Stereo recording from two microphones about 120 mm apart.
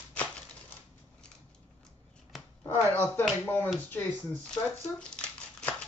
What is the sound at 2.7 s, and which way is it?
Speech, 15° left (ahead or behind).